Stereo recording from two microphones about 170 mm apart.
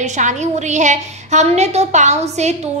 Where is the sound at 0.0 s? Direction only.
45° right (ahead or behind).